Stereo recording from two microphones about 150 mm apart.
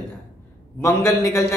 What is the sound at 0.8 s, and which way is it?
Speech, 20° left (ahead or behind).